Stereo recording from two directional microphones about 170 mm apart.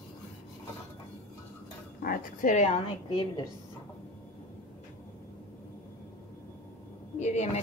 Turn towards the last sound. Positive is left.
turn(degrees=40)  # may be behind; listen again after turning